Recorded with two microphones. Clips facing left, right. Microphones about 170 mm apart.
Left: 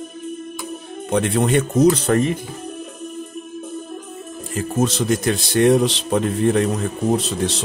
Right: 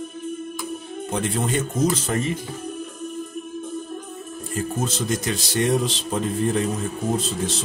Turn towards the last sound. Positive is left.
turn(degrees=75)  # may be behind; listen again after turning